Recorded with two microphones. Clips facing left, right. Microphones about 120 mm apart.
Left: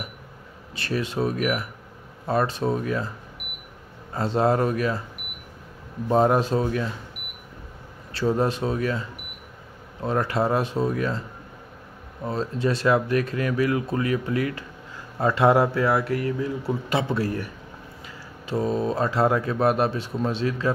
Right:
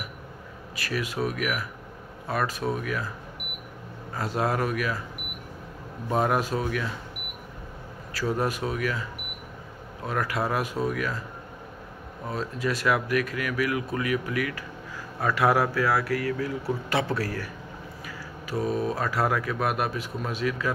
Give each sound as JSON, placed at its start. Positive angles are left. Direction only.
{"t": 0.7, "sound": "speech", "side_deg": 30}
{"t": 4.1, "sound": "speech", "side_deg": 30}
{"t": 6.0, "sound": "speech", "side_deg": 30}
{"t": 8.1, "sound": "speech", "side_deg": 25}
{"t": 10.0, "sound": "speech", "side_deg": 30}
{"t": 12.3, "sound": "speech", "side_deg": 30}